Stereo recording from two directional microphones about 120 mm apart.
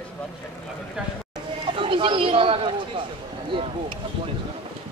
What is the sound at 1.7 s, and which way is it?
Speech, 45° right (ahead or behind).